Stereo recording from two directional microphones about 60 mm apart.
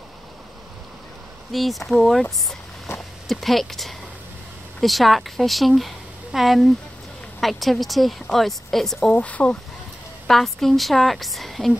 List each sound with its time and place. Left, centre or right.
1.5 s a woman's voice: centre
3.3 s a woman's voice: centre
9.1 s speech: left
10.2 s a woman's voice: centre